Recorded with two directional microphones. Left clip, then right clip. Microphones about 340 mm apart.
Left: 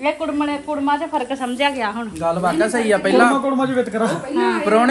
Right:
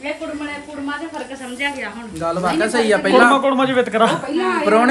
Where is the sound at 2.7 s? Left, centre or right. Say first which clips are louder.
Right 2 dB; centre.